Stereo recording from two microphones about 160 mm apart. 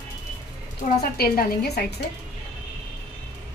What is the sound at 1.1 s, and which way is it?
Speech, 70° left (ahead or behind).